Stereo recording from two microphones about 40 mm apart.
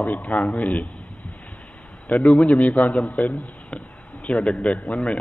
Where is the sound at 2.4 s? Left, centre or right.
Left.